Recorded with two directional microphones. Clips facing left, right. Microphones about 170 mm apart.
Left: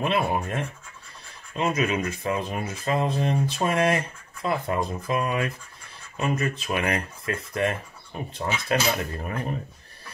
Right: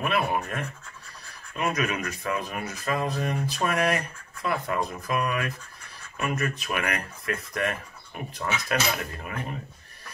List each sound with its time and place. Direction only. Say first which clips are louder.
0.0 s speech: left 2 dB; 25° left (ahead or behind)